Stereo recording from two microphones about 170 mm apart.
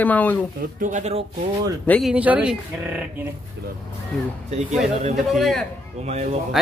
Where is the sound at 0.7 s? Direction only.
50° right (ahead or behind).